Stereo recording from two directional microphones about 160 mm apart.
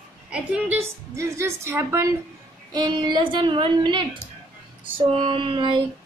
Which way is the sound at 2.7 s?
25° right (ahead or behind).